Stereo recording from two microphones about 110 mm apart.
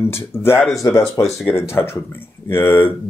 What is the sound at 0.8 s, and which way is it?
Speech, 20° left (ahead or behind).